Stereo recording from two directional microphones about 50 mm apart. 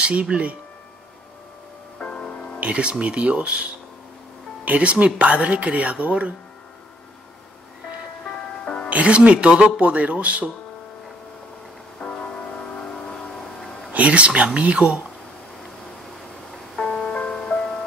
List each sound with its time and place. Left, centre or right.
0.0 s speech: right
2.0 s music: left
2.6 s speech: right
4.6 s speech: right
8.8 s speech: right
12.0 s music: centre
12.7 s vehicle: centre
13.9 s speech: right
16.7 s music: centre